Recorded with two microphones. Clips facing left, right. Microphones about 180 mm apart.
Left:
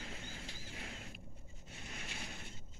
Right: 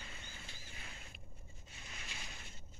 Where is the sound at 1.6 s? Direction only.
60° left (ahead or behind).